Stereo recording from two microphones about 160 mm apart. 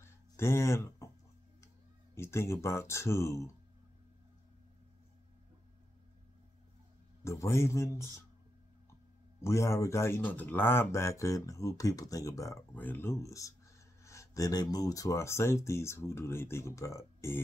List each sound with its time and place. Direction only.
0.0 s a sound: 15° left (ahead or behind)
2.1 s speech: 15° left (ahead or behind)
7.2 s speech: 15° left (ahead or behind)
9.4 s speech: 15° left (ahead or behind)